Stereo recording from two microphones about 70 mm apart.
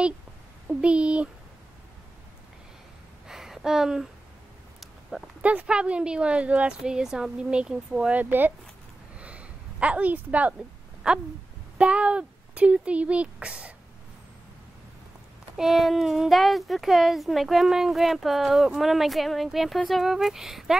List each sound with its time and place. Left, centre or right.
0.7 s speech: centre
3.3 s a sound: centre
5.4 s speech: right
8.2 s speech: right
9.1 s a sound: centre
11.0 s speech: centre
15.5 s a child's voice: centre